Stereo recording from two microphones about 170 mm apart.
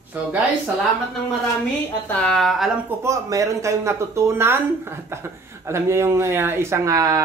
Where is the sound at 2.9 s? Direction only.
15° right (ahead or behind).